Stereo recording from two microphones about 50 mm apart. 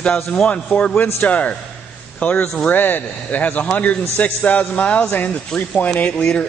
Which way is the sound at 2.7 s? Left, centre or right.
Left.